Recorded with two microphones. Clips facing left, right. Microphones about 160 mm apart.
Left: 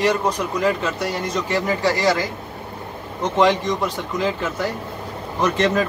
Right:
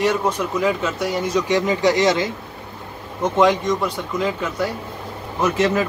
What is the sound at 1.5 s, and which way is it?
Speech, 20° right (ahead or behind).